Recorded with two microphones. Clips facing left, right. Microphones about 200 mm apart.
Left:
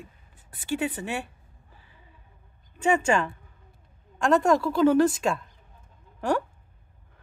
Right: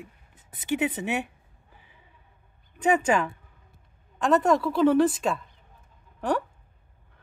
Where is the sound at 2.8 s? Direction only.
5° right (ahead or behind).